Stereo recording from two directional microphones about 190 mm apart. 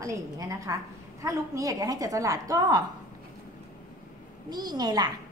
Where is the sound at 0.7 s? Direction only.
15° right (ahead or behind).